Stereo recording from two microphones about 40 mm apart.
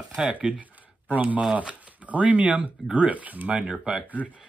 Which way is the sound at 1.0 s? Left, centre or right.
Right.